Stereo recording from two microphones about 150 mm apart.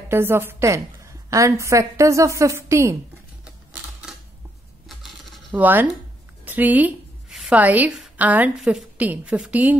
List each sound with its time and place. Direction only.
0.1 s a woman's voice: 15° right (ahead or behind)
4.1 s a sound: 5° right (ahead or behind)
4.8 s coin: centre (ahead or behind)
5.5 s a woman's voice: 10° right (ahead or behind)